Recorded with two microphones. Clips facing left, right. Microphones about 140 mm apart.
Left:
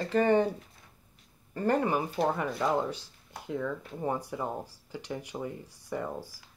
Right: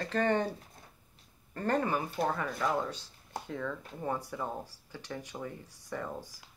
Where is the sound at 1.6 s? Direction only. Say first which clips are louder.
Left 3 dB; 10° left (ahead or behind).